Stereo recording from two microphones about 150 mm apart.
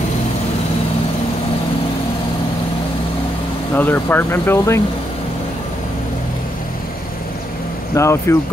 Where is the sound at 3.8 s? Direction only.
15° left (ahead or behind).